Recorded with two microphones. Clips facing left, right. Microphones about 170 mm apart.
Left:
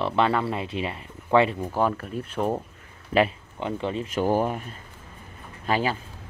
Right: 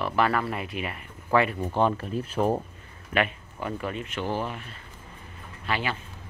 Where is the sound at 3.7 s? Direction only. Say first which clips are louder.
Left 4 dB; 25° left (ahead or behind).